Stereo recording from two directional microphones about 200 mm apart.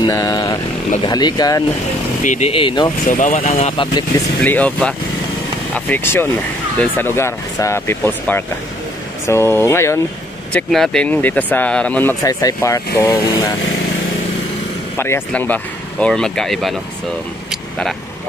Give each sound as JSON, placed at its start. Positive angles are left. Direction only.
{"t": 0.0, "sound": "vehicle", "side_deg": 20}
{"t": 1.0, "sound": "speech", "side_deg": 20}
{"t": 2.2, "sound": "speech", "side_deg": 35}
{"t": 3.1, "sound": "speech", "side_deg": 40}
{"t": 3.3, "sound": "speech", "side_deg": 30}
{"t": 4.4, "sound": "speech", "side_deg": 5}
{"t": 10.5, "sound": "speech", "side_deg": 0}
{"t": 15.0, "sound": "speech", "side_deg": 10}
{"t": 17.5, "sound": "vehicle", "side_deg": 0}